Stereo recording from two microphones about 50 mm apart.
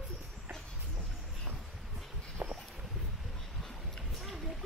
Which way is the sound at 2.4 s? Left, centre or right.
Right.